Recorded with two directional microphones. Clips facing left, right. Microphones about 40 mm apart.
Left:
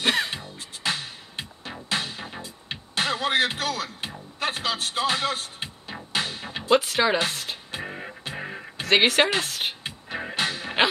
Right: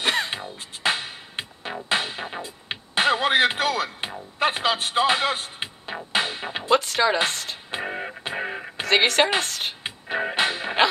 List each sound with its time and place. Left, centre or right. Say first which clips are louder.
0.0 s music: even; centre
0.3 s music: right 3 dB; right
6.7 s speech: even; centre
7.7 s music: right 9 dB; right
8.8 s speech: even; centre
9.8 s music: right 6 dB; right